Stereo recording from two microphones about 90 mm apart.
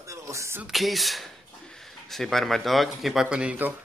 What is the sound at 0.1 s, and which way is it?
Music, 35° right (ahead or behind).